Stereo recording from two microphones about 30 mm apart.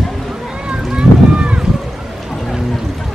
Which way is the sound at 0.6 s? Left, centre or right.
Right.